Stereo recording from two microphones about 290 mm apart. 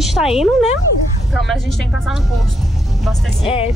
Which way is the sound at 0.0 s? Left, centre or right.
Centre.